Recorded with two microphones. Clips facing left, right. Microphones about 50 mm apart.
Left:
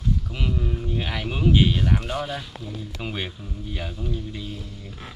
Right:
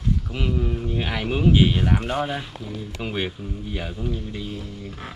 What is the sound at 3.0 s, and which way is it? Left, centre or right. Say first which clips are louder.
A man's voice: right 5 dB; centre.